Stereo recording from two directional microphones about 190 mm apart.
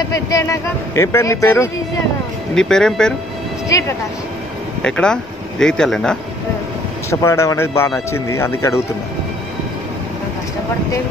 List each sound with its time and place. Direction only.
0.1 s a man's voice: 15° left (ahead or behind)
2.5 s speech: 5° left (ahead or behind)
4.8 s speech: 5° left (ahead or behind)
7.1 s a man's voice: 15° left (ahead or behind)